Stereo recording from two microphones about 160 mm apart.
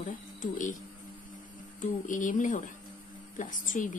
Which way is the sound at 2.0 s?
55° left (ahead or behind).